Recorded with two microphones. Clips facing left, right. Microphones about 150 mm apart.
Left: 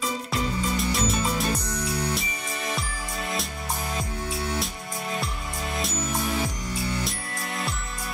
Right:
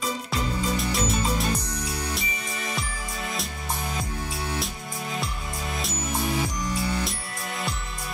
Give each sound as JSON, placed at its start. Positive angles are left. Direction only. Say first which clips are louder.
{"t": 0.3, "sound": "music", "louder": "even", "side_deg": 0}